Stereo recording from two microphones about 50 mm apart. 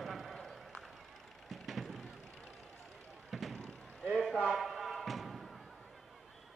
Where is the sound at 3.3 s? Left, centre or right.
Centre.